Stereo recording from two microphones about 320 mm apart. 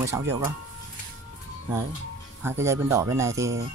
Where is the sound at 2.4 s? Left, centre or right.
Centre.